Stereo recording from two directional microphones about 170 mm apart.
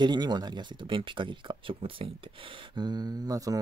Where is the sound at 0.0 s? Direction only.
25° right (ahead or behind).